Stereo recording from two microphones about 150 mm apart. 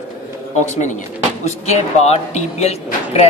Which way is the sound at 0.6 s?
55° left (ahead or behind).